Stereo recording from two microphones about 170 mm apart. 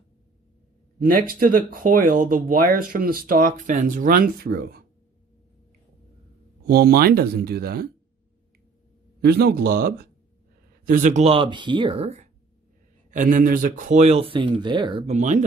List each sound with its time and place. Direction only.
1.0 s speech: 55° right (ahead or behind)
6.7 s speech: 65° right (ahead or behind)
9.2 s speech: 70° right (ahead or behind); by 12.3 s 40° right (ahead or behind)
13.1 s speech: 50° right (ahead or behind)